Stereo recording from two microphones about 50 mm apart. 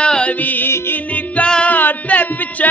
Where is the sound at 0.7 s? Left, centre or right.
Left.